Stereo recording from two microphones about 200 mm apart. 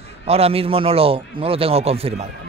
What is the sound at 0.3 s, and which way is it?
Speech, 30° right (ahead or behind).